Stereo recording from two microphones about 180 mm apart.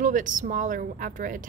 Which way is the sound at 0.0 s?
45° right (ahead or behind).